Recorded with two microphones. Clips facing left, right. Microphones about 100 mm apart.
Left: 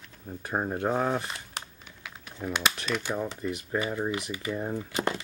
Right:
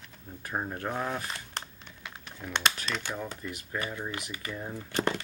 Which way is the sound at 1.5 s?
5° left (ahead or behind).